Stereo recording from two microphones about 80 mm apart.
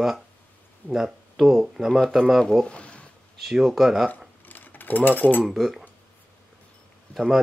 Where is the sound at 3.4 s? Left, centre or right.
Centre.